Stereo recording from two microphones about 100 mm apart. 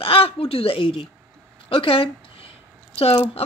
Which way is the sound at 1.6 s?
65° left (ahead or behind).